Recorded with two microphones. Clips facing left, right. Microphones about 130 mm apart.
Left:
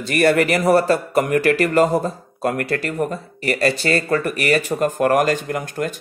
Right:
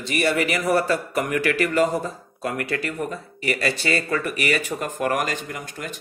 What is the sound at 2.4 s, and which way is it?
Speech, 50° left (ahead or behind).